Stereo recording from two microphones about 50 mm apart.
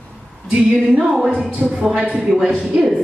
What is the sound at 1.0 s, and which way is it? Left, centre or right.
A woman's voice, centre.